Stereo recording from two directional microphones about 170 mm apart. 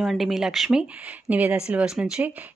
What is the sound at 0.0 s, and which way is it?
A woman's voice, centre (ahead or behind).